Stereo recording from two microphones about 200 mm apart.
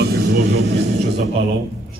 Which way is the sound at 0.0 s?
55° right (ahead or behind).